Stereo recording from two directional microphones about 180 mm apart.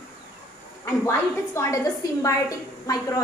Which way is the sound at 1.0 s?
15° left (ahead or behind).